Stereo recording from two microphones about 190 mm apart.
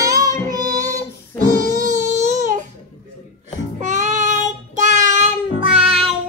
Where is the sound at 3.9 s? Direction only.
40° right (ahead or behind).